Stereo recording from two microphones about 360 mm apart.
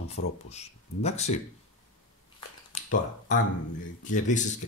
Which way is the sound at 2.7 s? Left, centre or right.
Centre.